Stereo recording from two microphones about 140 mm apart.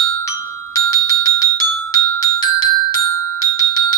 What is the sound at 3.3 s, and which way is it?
Bell, 25° left (ahead or behind).